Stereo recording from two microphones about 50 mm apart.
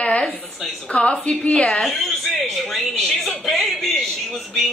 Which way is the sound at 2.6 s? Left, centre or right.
Centre.